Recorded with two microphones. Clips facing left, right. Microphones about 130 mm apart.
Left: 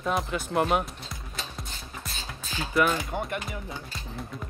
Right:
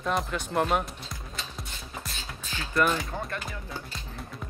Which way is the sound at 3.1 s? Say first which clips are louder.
Left 3 dB; 20° left (ahead or behind).